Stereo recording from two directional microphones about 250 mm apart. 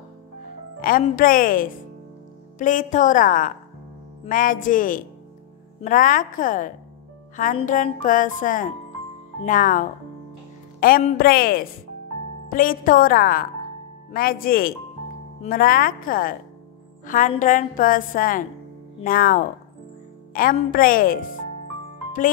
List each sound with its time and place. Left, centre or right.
0.7 s a woman's voice: left